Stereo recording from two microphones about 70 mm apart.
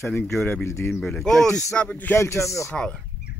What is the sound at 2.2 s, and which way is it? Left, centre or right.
Speech, left.